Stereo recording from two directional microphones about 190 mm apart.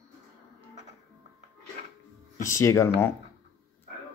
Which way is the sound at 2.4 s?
15° left (ahead or behind).